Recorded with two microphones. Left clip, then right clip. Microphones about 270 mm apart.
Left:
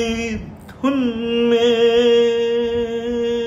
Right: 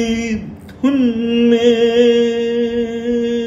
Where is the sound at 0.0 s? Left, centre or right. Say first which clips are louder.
Right 2 dB; centre.